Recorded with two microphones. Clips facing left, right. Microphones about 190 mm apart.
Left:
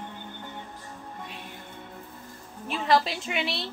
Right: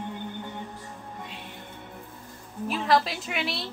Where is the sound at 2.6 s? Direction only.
Centre (ahead or behind).